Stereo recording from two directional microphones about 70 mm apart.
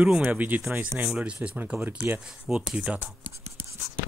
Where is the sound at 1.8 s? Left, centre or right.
Right.